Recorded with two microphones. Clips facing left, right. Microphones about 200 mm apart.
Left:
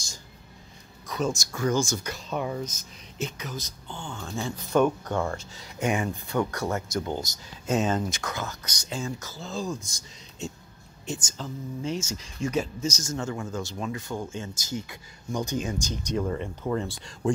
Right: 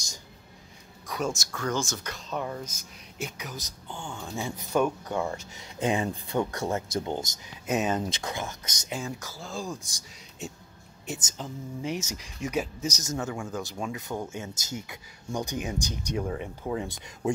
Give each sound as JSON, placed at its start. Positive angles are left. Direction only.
{"t": 1.0, "sound": "speech", "side_deg": -10}
{"t": 1.5, "sound": "speech", "side_deg": 10}
{"t": 2.6, "sound": "speech", "side_deg": -10}
{"t": 8.1, "sound": "speech", "side_deg": -30}